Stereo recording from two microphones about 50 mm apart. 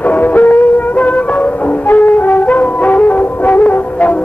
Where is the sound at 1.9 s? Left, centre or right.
Left.